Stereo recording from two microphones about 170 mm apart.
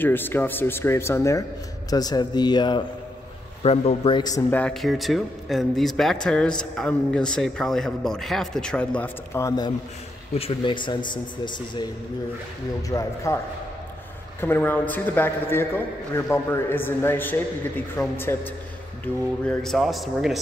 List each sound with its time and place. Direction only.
0.0 s a man's voice: 10° left (ahead or behind)
3.6 s a man's voice: 35° left (ahead or behind)
4.5 s speech: 5° left (ahead or behind)
10.3 s a man's voice: 30° left (ahead or behind)
14.4 s a man's voice: 10° left (ahead or behind)
19.4 s speech: centre (ahead or behind)